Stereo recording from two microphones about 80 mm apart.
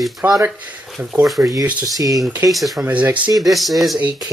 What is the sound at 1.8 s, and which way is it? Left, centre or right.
Speech, right.